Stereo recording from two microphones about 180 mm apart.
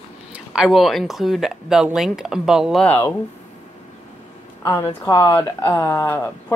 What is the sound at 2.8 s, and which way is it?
Speech, 15° left (ahead or behind).